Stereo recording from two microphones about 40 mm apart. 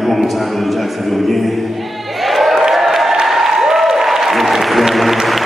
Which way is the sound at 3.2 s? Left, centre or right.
Centre.